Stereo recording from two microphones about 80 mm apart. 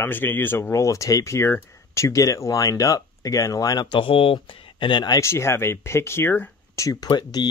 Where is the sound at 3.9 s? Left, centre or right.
Left.